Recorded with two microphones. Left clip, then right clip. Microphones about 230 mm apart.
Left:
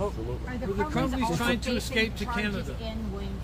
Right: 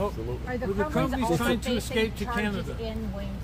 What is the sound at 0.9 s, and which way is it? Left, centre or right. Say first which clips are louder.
Speech: right 2 dB; right.